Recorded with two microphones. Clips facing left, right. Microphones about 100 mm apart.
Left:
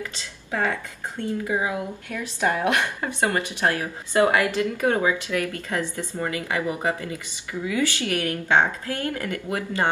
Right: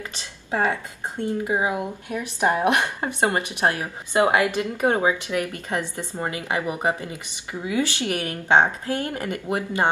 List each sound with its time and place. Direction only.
0.0 s speech: 20° right (ahead or behind)